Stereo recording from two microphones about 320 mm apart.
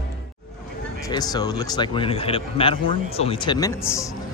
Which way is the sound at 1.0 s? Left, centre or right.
Centre.